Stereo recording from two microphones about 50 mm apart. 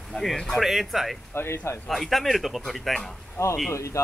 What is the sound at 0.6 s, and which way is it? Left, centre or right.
Speech, centre.